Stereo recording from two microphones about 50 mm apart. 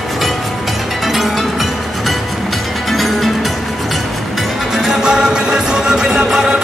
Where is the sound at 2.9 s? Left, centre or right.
Centre.